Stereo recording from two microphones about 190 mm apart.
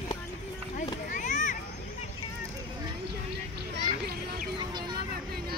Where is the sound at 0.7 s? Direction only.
40° left (ahead or behind).